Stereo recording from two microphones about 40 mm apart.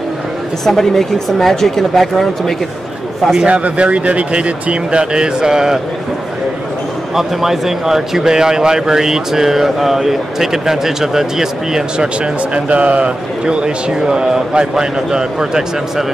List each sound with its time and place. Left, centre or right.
0.7 s speech: centre
3.4 s a man's voice: right; by 5.8 s centre
7.2 s a man's voice: centre
12.5 s a man's voice: right